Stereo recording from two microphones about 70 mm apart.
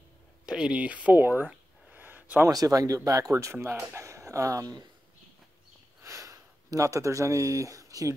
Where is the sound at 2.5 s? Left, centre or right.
Right.